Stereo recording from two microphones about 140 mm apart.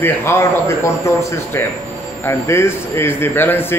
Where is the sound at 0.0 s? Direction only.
15° left (ahead or behind).